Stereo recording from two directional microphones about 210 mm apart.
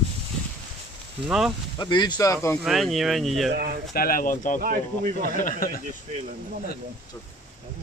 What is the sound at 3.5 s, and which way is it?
Speech, 45° right (ahead or behind).